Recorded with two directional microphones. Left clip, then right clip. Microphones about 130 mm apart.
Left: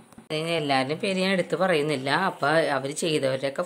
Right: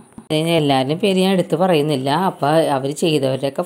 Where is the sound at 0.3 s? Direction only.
35° right (ahead or behind).